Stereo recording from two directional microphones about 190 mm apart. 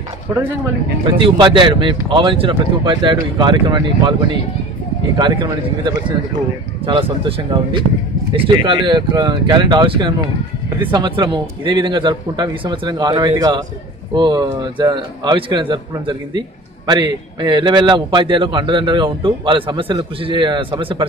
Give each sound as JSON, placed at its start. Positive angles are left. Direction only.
{"t": 1.0, "sound": "a man's voice", "side_deg": -25}
{"t": 5.1, "sound": "a man's voice", "side_deg": -25}